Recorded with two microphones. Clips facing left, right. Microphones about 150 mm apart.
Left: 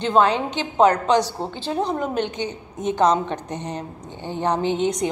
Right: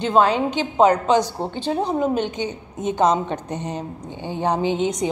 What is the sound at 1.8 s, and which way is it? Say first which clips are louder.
A woman's voice: right 1 dB; 5° right (ahead or behind).